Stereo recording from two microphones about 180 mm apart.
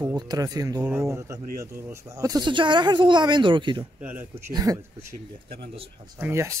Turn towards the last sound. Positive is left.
turn(degrees=-15)  # may be behind; listen again after turning